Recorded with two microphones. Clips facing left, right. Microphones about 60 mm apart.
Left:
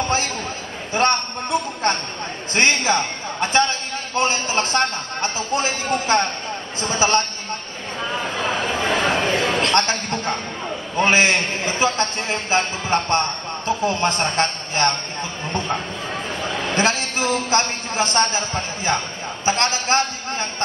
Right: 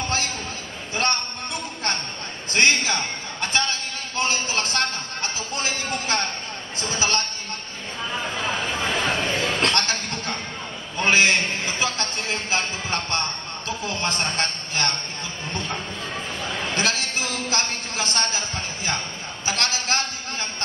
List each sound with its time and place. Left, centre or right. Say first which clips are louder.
0.9 s a man's voice: left 6 dB; left
8.5 s a sound: left 5 dB; left
11.0 s a man's voice: left 2 dB; left
16.5 s a man's voice: left 5 dB; left